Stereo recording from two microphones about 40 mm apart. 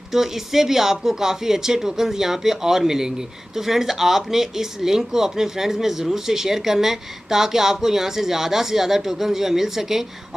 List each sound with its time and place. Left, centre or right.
0.1 s speech: centre